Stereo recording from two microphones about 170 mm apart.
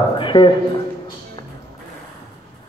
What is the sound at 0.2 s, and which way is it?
Speech, 30° left (ahead or behind).